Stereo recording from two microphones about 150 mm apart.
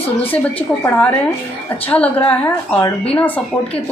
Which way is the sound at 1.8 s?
10° left (ahead or behind).